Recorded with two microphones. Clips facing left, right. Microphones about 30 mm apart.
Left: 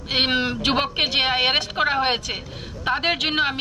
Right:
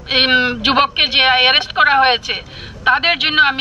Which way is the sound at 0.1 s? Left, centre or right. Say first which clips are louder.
Right 7 dB; right.